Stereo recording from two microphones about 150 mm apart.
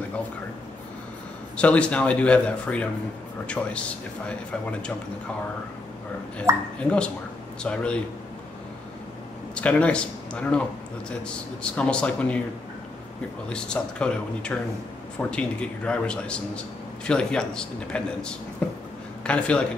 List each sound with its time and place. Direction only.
1.6 s a man's voice: 10° left (ahead or behind)
6.5 s speech: 20° right (ahead or behind)
6.8 s a man's voice: 5° left (ahead or behind)
9.6 s a man's voice: 10° left (ahead or behind)
13.5 s a man's voice: 5° left (ahead or behind)